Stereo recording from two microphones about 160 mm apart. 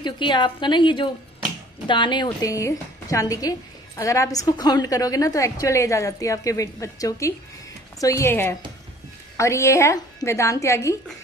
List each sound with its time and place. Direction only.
0.0 s a woman's voice: 30° left (ahead or behind)